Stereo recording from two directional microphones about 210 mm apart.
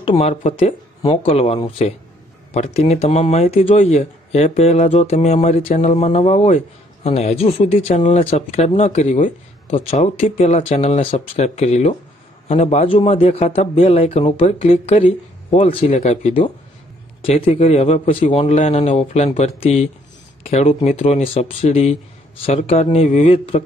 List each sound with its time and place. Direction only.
0.0 s a man's voice: 25° left (ahead or behind)